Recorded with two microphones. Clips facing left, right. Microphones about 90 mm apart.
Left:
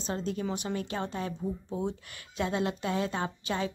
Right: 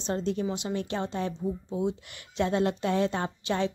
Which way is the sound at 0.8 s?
25° right (ahead or behind).